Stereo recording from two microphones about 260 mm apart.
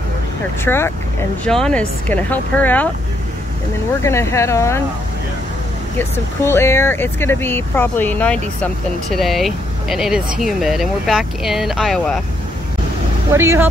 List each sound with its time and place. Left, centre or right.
0.7 s speech: centre
4.0 s speech: centre
5.9 s speech: centre
13.3 s speech: centre